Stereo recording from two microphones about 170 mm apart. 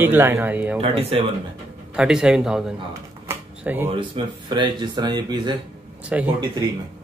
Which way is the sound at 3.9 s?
30° right (ahead or behind).